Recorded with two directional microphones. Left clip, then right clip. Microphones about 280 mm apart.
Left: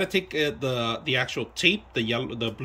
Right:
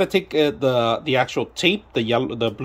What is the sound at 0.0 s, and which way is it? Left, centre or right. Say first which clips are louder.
Speech: right 6 dB; centre.